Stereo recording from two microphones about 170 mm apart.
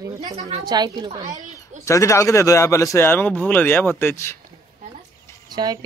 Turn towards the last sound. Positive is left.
turn(degrees=-25)  # may be behind; listen again after turning